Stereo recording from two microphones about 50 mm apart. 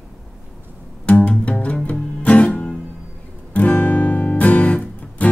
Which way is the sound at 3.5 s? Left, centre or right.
Left.